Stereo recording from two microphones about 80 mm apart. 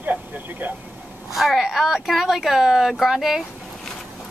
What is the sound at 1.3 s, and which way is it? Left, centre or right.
Speech, centre.